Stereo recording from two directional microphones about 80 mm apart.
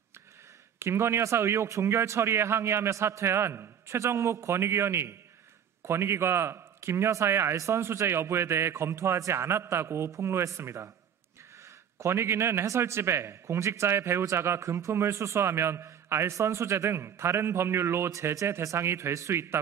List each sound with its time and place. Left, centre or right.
0.7 s a man's voice: right
12.0 s a man's voice: right